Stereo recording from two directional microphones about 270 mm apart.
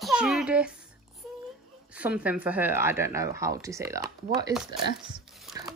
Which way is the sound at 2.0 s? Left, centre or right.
Centre.